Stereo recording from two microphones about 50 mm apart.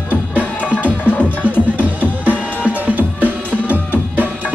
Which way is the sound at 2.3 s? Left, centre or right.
Right.